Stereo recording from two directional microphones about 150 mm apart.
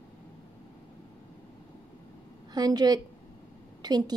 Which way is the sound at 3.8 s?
30° right (ahead or behind).